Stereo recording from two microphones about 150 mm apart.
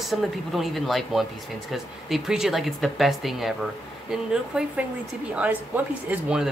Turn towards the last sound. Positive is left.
turn(degrees=-10)  # may be behind; listen again after turning